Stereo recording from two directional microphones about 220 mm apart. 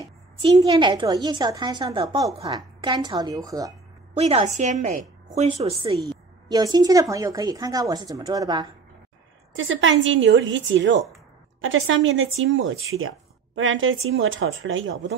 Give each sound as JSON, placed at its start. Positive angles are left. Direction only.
{"t": 0.0, "sound": "a woman's voice", "side_deg": -20}
{"t": 4.2, "sound": "a woman's voice", "side_deg": -30}
{"t": 9.5, "sound": "speech", "side_deg": -60}